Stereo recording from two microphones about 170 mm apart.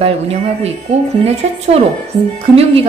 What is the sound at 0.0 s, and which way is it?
A woman's voice, 40° right (ahead or behind).